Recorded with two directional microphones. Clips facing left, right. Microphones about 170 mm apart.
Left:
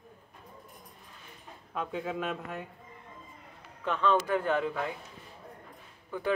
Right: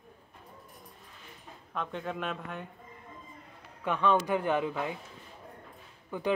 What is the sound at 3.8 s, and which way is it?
Speech, 15° right (ahead or behind).